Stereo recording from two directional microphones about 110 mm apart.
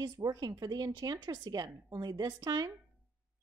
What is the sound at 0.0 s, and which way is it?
A woman's voice, 35° right (ahead or behind).